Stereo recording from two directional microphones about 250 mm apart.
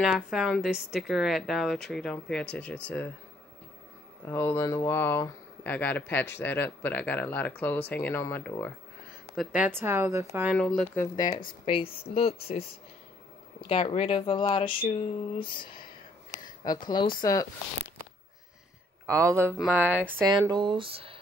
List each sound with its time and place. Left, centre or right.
0.0 s a woman's voice: centre
4.3 s a woman's voice: centre
11.1 s speech: centre
13.7 s speech: left
19.0 s a woman's voice: centre
20.4 s speech: centre